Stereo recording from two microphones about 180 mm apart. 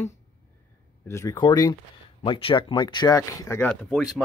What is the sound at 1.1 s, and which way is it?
Speech, 15° left (ahead or behind).